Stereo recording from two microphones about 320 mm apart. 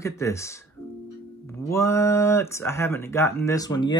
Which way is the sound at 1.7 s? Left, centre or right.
Centre.